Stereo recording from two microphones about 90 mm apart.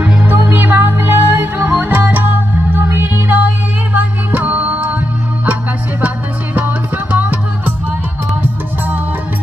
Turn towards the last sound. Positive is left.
turn(degrees=-20)  # may be behind; listen again after turning